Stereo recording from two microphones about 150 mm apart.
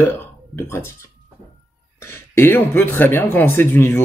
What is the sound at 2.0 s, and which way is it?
Speech, 15° left (ahead or behind).